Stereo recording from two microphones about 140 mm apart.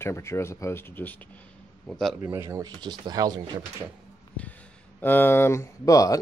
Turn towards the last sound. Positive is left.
turn(degrees=25)  # may be behind; listen again after turning